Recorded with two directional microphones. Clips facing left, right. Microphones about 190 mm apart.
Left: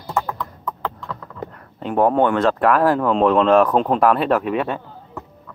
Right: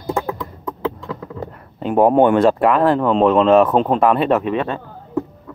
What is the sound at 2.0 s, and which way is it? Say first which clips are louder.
Speech: right 4 dB; 15° right (ahead or behind).